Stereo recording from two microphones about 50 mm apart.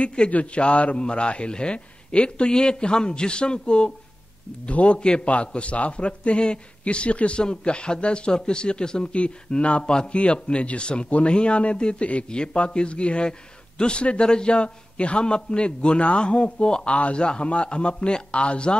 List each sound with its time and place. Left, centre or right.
0.0 s a man's voice: centre